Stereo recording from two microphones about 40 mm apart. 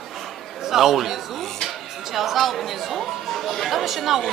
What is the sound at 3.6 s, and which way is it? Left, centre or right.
Speech, centre.